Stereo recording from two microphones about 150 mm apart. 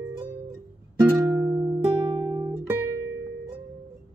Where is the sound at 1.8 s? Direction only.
35° right (ahead or behind).